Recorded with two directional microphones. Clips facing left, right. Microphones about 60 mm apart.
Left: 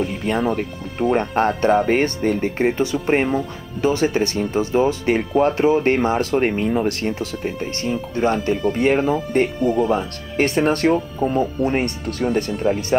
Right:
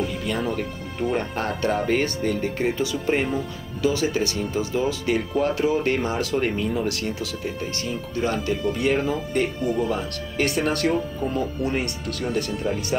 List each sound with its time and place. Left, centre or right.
0.0 s music: left
0.6 s speech: left